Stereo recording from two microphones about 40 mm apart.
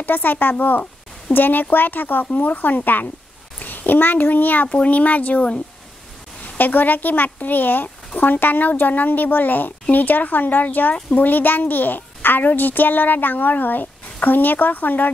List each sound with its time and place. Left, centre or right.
0.0 s a child's voice: left
6.6 s a child's voice: left